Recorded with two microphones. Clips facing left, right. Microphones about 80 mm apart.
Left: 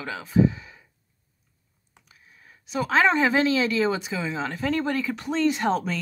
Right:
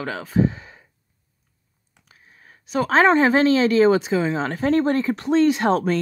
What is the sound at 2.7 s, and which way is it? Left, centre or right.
Speech, right.